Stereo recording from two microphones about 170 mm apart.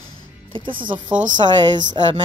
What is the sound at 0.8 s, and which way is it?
Music, 25° right (ahead or behind).